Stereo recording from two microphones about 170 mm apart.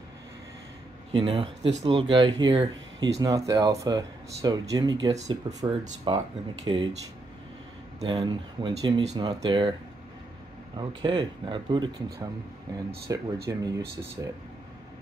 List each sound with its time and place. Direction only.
1.1 s speech: 30° right (ahead or behind)
8.0 s speech: 30° right (ahead or behind)
10.8 s speech: 25° right (ahead or behind)